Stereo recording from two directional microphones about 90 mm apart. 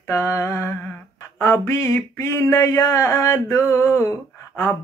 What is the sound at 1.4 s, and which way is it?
Speech, 30° left (ahead or behind).